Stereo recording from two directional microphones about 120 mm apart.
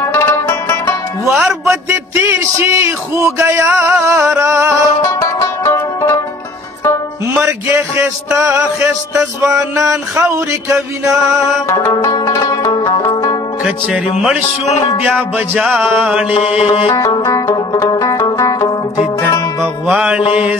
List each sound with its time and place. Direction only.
0.0 s music: 20° left (ahead or behind)
0.5 s music: 30° left (ahead or behind)
1.3 s music: 10° right (ahead or behind); by 4.9 s 25° right (ahead or behind)
5.2 s music: 25° left (ahead or behind)
8.4 s music: 25° right (ahead or behind)
12.1 s music: 30° left (ahead or behind)
15.3 s music: 10° right (ahead or behind)
16.3 s music: 55° left (ahead or behind)
17.2 s music: 35° left (ahead or behind)
18.2 s banjo: 35° left (ahead or behind)
19.9 s mantra: 5° right (ahead or behind)